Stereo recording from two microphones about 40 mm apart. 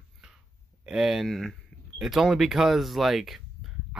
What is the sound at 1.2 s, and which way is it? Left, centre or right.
Speech, centre.